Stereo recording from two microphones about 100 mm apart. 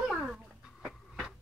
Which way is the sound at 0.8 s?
5° right (ahead or behind).